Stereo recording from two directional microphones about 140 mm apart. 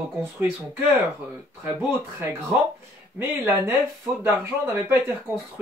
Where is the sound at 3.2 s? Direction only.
15° right (ahead or behind).